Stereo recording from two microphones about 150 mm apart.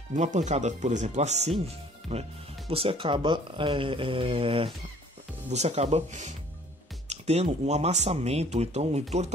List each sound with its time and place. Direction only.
0.1 s speech: 55° right (ahead or behind)
2.7 s speech: 40° right (ahead or behind)